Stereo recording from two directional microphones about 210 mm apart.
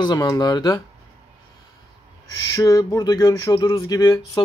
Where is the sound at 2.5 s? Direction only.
15° left (ahead or behind).